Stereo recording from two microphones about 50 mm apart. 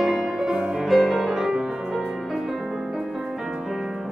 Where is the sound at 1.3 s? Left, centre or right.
Centre.